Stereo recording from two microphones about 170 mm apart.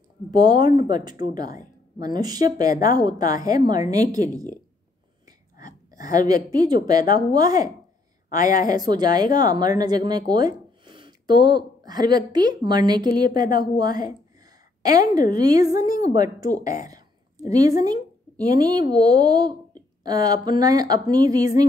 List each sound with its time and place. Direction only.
0.3 s a woman's voice: 25° right (ahead or behind)
5.6 s a woman's voice: 20° right (ahead or behind)
16.8 s a sound: 20° right (ahead or behind)
18.4 s a woman's voice: 25° right (ahead or behind)